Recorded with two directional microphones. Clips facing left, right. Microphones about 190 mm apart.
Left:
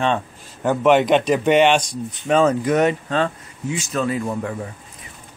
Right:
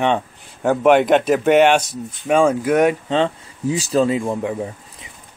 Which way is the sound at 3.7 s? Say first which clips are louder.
Right 5 dB; 35° right (ahead or behind).